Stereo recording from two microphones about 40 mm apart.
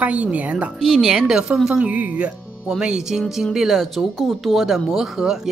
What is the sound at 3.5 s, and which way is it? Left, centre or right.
Speech, centre.